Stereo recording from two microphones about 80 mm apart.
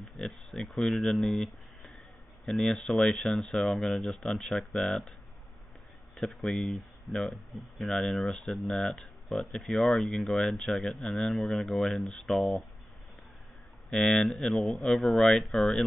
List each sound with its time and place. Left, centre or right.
0.2 s speech: centre
6.1 s speech: centre
7.1 s speech: left
7.5 s speech: centre
11.0 s speech: centre
11.2 s speech: centre
13.8 s speech: centre